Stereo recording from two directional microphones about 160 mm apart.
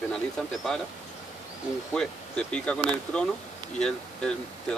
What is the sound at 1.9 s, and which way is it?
Speech, 5° left (ahead or behind).